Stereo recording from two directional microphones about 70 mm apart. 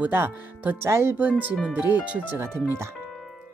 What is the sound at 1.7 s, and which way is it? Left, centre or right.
Speech, right.